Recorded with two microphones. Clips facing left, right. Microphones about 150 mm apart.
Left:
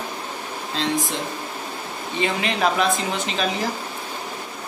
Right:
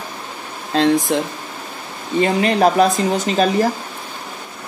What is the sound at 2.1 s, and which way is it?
Speech, 45° right (ahead or behind).